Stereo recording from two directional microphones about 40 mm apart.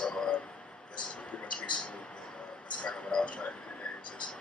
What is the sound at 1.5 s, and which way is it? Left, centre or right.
Speech, left.